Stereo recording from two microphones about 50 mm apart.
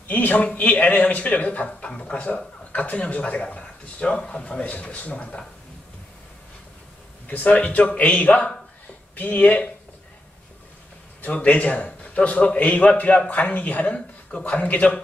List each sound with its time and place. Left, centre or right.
0.1 s a man's voice: left
7.2 s a man's voice: left
11.1 s a man's voice: left